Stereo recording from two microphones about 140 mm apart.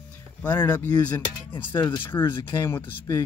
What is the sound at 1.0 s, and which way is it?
Speech, 10° left (ahead or behind).